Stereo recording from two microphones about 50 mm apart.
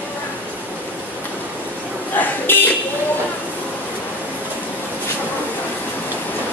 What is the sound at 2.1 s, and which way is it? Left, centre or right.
Buzzer, left.